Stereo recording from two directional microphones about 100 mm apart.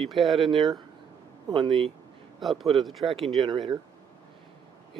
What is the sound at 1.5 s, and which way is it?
Speech, 55° right (ahead or behind).